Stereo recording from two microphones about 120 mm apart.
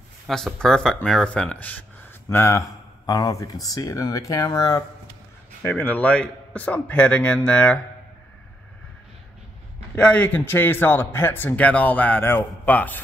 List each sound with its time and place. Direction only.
0.3 s speech: 5° left (ahead or behind); by 4.8 s 30° left (ahead or behind)
5.6 s a man's voice: 15° left (ahead or behind)
9.9 s a man's voice: 10° left (ahead or behind)